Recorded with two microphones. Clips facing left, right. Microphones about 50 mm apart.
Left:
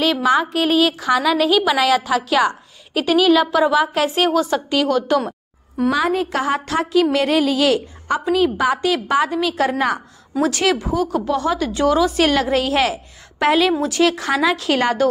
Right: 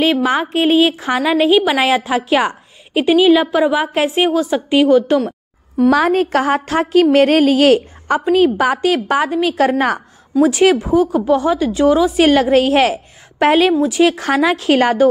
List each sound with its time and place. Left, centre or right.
0.0 s a woman's voice: right
4.3 s speech: centre
4.6 s speech: centre
5.9 s a woman's voice: right
10.4 s a woman's voice: right
12.2 s a woman's voice: right
13.7 s speech: centre
14.0 s a woman's voice: right